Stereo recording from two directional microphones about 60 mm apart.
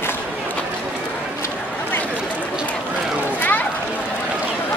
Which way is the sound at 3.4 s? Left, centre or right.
Left.